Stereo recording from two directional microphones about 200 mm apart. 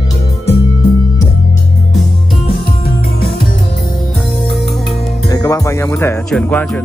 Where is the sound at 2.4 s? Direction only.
50° left (ahead or behind).